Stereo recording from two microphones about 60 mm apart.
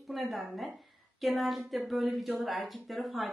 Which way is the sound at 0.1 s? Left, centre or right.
Centre.